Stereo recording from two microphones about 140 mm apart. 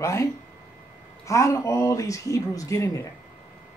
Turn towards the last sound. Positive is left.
turn(degrees=20)  # may be behind; listen again after turning